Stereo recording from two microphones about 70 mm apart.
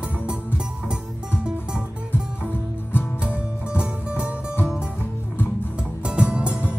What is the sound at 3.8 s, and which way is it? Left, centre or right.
Music, centre.